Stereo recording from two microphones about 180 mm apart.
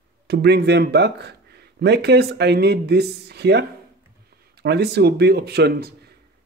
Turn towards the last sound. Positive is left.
turn(degrees=-60)  # may be behind; listen again after turning